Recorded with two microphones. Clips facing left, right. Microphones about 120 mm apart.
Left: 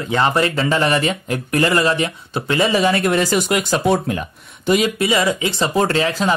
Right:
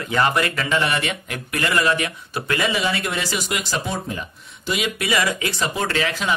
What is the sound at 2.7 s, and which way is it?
Speech, 45° left (ahead or behind).